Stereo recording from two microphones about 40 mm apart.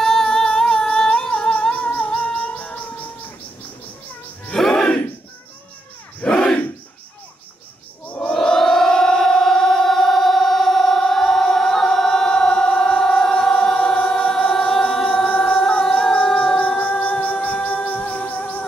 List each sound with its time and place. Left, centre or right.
0.0 s humming: centre
0.7 s singing: centre
1.3 s music: left
4.6 s battle cry: centre
6.2 s battle cry: left
8.3 s choir: centre
13.7 s music: centre
15.2 s music: left
15.8 s a sound: centre
16.4 s music: left